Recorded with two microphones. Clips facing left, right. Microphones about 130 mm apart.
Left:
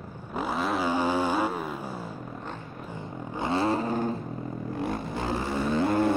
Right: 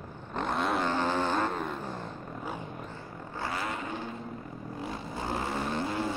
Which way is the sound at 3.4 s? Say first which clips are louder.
Left 9 dB; 30° left (ahead or behind).